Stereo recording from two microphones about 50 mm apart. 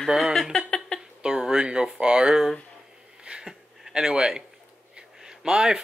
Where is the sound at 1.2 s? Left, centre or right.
Centre.